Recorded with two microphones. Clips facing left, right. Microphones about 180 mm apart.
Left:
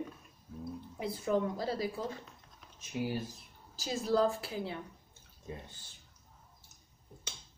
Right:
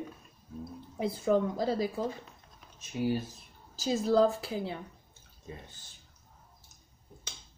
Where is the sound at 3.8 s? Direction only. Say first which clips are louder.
Right 5 dB; 25° right (ahead or behind).